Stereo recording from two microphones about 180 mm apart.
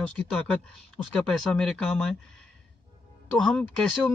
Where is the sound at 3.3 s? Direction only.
5° left (ahead or behind).